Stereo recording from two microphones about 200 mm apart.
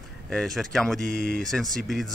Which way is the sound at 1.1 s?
50° left (ahead or behind).